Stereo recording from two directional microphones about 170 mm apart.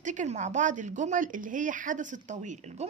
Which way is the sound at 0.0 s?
45° right (ahead or behind).